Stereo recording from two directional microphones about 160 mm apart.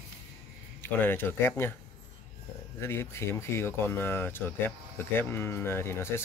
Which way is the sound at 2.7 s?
15° left (ahead or behind).